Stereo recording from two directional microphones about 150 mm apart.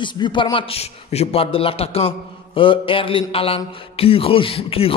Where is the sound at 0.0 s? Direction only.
30° left (ahead or behind).